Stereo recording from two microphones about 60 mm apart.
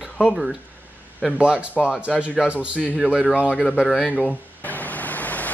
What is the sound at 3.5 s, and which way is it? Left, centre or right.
Speech, centre.